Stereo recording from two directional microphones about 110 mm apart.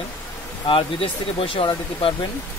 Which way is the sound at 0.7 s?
55° left (ahead or behind).